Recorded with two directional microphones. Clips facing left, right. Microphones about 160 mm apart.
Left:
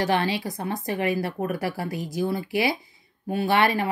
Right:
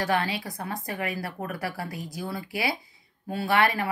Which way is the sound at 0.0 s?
25° left (ahead or behind).